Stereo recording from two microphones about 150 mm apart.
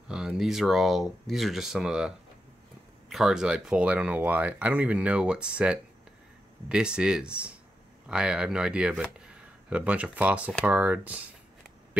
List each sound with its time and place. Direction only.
0.1 s speech: 5° right (ahead or behind)